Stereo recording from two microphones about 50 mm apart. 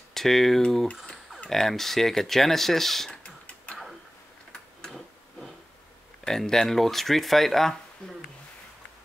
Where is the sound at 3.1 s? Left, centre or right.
Left.